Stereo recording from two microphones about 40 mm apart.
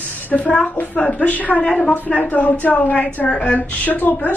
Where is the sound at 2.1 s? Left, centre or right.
Left.